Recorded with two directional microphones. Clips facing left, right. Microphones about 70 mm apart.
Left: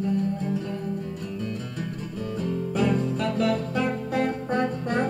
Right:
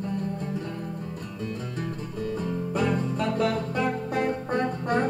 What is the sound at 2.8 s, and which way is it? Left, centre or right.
Music, right.